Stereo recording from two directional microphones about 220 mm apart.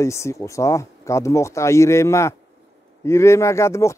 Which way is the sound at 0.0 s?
15° left (ahead or behind).